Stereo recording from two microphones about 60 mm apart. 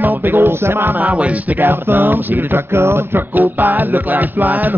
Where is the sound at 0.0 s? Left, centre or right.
Right.